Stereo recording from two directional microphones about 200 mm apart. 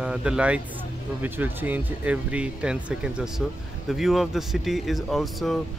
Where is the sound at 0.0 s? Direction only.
5° right (ahead or behind).